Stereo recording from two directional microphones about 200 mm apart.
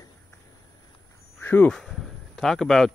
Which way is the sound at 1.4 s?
5° left (ahead or behind).